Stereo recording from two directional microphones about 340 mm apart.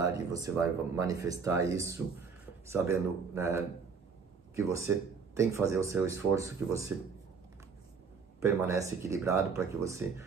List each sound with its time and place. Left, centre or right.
0.0 s speech: centre
8.4 s speech: centre